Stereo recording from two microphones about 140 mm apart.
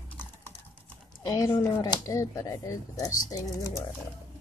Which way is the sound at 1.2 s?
25° left (ahead or behind).